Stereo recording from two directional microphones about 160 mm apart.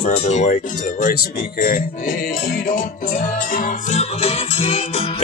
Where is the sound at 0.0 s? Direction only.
45° left (ahead or behind).